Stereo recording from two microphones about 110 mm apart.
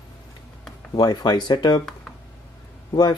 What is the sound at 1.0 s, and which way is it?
Speech, 40° left (ahead or behind).